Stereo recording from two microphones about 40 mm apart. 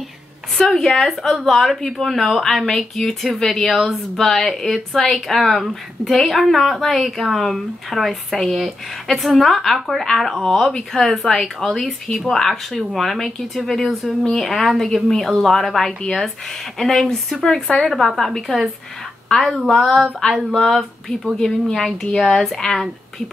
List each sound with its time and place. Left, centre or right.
0.6 s speech: centre
12.1 s a woman's voice: centre
19.5 s a woman's voice: centre
20.2 s speech: centre
20.5 s speech: centre
22.0 s speech: centre